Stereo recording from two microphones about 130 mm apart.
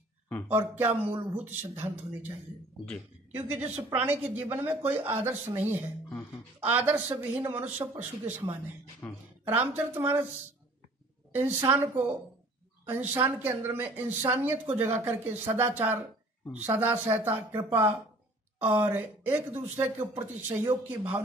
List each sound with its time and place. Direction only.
0.7 s speech: 15° right (ahead or behind)
3.3 s speech: 10° right (ahead or behind)
9.0 s a woman's voice: 15° left (ahead or behind)
9.4 s speech: 15° right (ahead or behind)
11.3 s speech: 15° right (ahead or behind)